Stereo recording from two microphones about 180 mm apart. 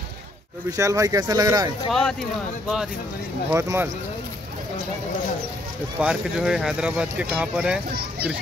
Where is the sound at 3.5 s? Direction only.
15° right (ahead or behind).